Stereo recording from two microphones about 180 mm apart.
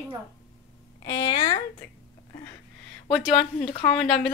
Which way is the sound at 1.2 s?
25° left (ahead or behind).